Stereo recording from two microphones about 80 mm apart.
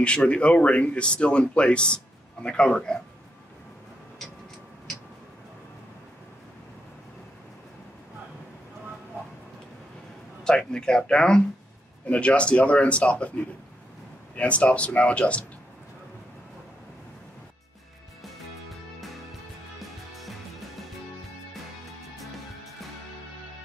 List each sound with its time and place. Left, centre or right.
0.0 s speech: centre
10.4 s speech: centre
14.3 s speech: centre
18.2 s music: centre